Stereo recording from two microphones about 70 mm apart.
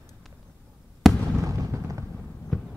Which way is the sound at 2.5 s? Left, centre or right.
Centre.